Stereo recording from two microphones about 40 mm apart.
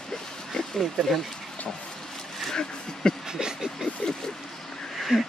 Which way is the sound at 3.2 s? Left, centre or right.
Centre.